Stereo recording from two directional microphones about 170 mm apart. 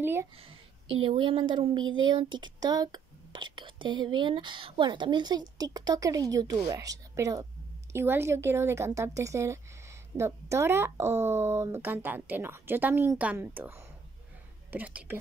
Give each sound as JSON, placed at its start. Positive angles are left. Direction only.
{"t": 0.0, "sound": "a woman's voice", "side_deg": -15}
{"t": 0.4, "sound": "speech", "side_deg": -35}